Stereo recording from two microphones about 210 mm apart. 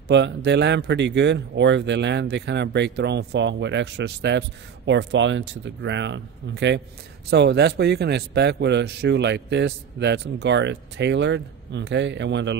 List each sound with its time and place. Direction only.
0.1 s speech: 55° right (ahead or behind)